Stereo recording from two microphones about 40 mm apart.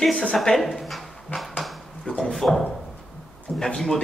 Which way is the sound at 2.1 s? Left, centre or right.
Centre.